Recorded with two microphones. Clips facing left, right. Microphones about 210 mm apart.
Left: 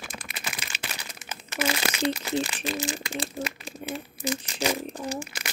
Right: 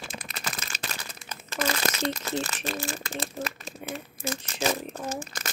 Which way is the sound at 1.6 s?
10° left (ahead or behind).